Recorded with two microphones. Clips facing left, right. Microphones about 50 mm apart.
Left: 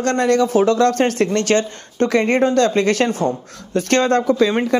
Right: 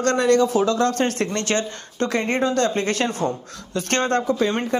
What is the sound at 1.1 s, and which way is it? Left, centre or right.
A man's voice, left.